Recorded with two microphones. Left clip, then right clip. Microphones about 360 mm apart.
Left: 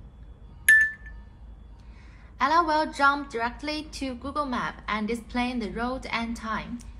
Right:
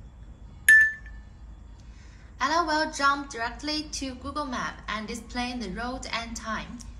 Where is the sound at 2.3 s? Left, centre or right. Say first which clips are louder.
Left 3 dB; left.